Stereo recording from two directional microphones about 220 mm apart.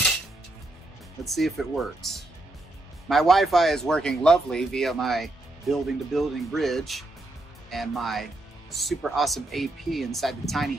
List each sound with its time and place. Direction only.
1.2 s speech: centre (ahead or behind)